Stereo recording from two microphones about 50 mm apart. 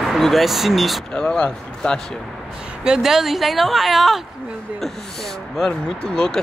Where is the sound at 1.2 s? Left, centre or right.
Centre.